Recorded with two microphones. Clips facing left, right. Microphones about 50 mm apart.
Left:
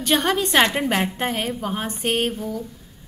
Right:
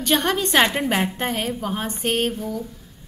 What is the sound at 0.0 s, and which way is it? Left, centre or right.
A woman's voice, centre.